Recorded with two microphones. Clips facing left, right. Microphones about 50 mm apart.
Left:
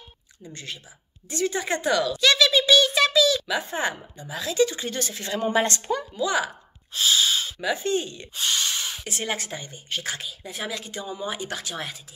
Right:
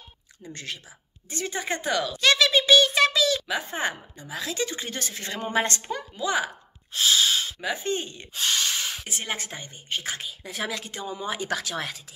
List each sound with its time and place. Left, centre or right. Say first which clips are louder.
0.5 s speech: right 1 dB; right
1.3 s speech: left 4 dB; right
2.1 s a sound: right 2 dB; right
3.4 s speech: left 2 dB; centre
4.2 s a woman's voice: left 8 dB; right
6.9 s gasp: even; right
7.6 s speech: left 3 dB; right
8.4 s a sound: even; right
9.3 s speech: left 2 dB; right
10.4 s speech: right 3 dB; right
10.9 s speech: even; right